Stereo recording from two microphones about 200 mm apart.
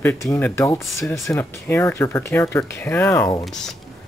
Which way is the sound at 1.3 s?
10° left (ahead or behind).